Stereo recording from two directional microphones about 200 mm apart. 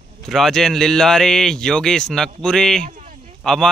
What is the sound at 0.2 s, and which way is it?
A man's voice, centre (ahead or behind).